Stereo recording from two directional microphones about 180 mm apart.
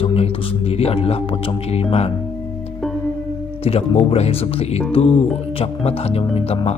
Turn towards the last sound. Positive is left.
turn(degrees=35)  # may be behind; listen again after turning